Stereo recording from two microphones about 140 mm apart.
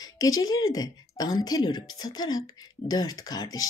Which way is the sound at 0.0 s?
25° left (ahead or behind).